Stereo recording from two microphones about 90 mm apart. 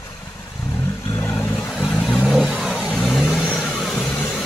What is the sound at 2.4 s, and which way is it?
Vehicle, 5° right (ahead or behind).